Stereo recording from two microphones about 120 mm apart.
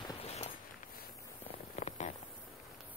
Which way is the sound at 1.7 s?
80° left.